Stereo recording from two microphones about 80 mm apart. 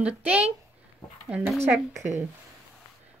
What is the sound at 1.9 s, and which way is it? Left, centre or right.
Speech, right.